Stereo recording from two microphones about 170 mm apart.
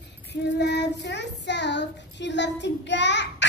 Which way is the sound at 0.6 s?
90° left.